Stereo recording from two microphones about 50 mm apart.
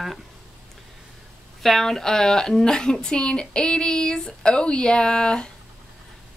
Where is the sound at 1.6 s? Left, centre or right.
Centre.